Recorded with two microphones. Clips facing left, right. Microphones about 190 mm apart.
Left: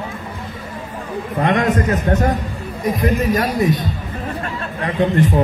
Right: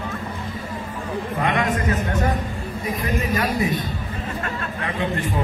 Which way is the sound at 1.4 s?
45° left (ahead or behind).